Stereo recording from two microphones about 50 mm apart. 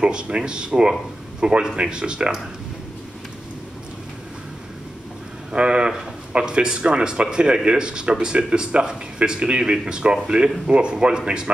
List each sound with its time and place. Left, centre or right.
0.0 s speech: centre
5.5 s speech: right